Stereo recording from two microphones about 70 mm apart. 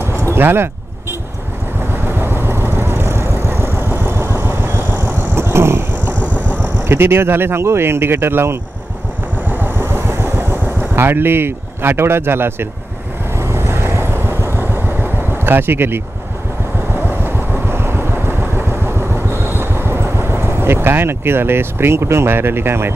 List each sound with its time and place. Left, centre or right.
0.3 s speech: right
2.0 s vehicle: right
6.1 s vehicle: left
6.8 s speech: right
9.5 s vehicle: right